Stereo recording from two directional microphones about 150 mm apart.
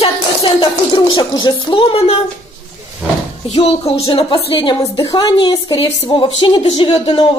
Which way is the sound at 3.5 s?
40° left (ahead or behind).